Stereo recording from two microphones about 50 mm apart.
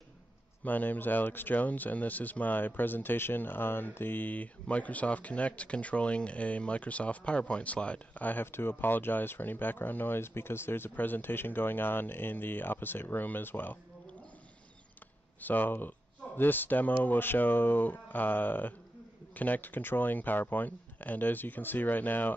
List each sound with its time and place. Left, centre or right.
0.7 s speech: left
8.5 s speech: left
15.4 s speech: left